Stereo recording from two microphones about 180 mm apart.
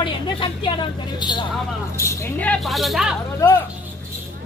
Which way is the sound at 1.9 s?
15° left (ahead or behind).